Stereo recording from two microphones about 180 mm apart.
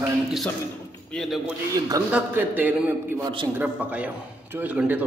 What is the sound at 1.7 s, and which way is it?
A man's voice, 20° right (ahead or behind).